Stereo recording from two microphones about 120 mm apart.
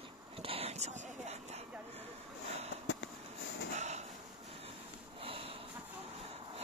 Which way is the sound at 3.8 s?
70° right (ahead or behind).